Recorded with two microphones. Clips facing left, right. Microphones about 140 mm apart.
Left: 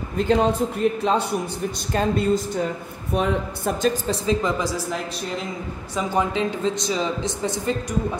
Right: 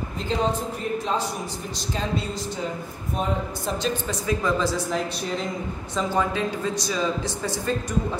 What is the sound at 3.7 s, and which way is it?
Speech, 45° left (ahead or behind).